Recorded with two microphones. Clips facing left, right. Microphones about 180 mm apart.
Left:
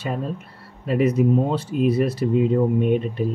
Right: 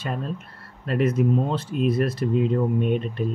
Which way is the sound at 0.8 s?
5° left (ahead or behind).